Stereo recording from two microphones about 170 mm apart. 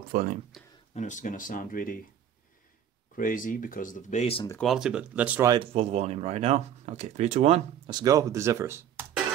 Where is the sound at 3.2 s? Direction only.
55° left (ahead or behind); by 4.5 s 35° left (ahead or behind).